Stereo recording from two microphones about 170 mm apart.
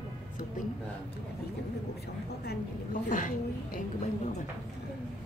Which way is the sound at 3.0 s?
50° left (ahead or behind).